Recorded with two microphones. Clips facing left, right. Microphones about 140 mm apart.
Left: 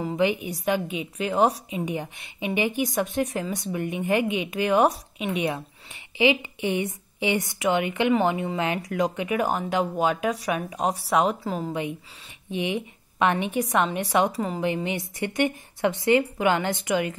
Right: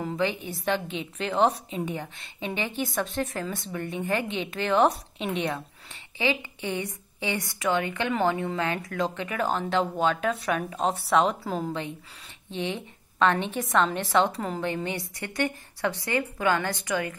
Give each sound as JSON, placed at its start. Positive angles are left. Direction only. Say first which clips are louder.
{"t": 0.0, "sound": "a woman's voice", "louder": "left 4 dB", "side_deg": 15}
{"t": 6.1, "sound": "a woman's voice", "louder": "left 6 dB", "side_deg": 20}